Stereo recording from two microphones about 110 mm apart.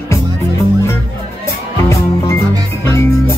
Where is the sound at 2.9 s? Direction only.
25° left (ahead or behind).